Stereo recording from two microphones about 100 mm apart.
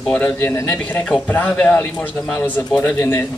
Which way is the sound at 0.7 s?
5° left (ahead or behind).